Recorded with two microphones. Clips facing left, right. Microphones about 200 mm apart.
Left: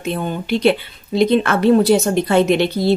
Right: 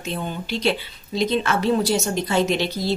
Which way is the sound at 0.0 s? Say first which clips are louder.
Left 6 dB; 55° left (ahead or behind).